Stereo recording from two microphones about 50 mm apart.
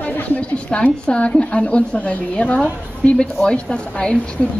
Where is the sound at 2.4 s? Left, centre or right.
Left.